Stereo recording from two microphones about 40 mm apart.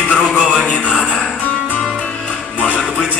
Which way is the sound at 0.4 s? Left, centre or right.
Centre.